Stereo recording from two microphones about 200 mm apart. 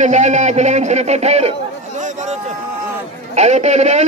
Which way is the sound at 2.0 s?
35° right (ahead or behind).